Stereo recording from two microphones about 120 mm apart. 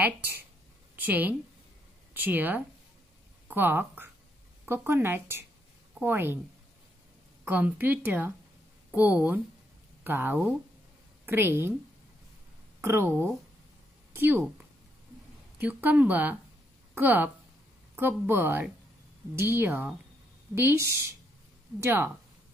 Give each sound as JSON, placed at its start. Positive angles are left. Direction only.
{"t": 0.0, "sound": "speech", "side_deg": -15}
{"t": 7.4, "sound": "speech", "side_deg": -15}
{"t": 12.8, "sound": "speech", "side_deg": -20}
{"t": 15.5, "sound": "speech", "side_deg": -15}